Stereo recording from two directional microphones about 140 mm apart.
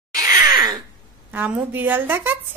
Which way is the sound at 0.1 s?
25° right (ahead or behind).